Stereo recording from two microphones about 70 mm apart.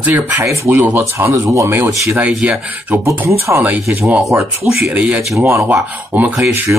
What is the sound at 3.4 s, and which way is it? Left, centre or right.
Speech, right.